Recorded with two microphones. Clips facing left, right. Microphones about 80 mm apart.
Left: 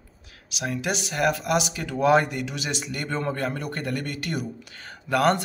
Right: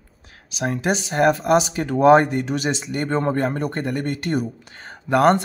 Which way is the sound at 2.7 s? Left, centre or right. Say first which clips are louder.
Right 6 dB; right.